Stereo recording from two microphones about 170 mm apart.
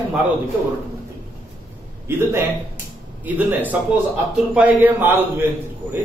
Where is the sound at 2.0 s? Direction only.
15° right (ahead or behind).